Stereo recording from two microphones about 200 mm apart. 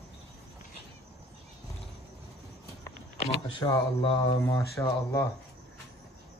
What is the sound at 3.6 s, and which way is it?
Speech, 25° left (ahead or behind).